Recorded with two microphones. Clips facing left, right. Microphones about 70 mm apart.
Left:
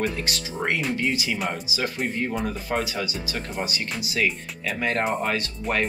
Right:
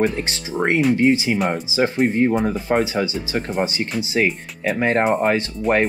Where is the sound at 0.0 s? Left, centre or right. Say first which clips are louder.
Right 6 dB; right.